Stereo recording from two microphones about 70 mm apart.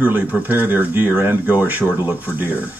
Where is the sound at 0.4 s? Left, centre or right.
Right.